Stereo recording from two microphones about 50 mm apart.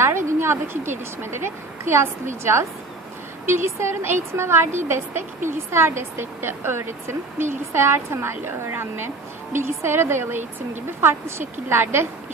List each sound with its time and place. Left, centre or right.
0.0 s a woman's voice: right